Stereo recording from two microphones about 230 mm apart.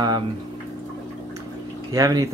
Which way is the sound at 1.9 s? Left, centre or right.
Centre.